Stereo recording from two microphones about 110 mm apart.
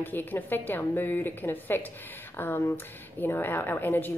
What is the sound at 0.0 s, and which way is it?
A woman's voice, 15° left (ahead or behind).